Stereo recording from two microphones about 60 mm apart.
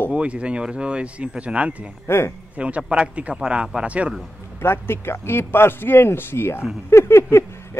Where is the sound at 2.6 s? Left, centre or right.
Centre.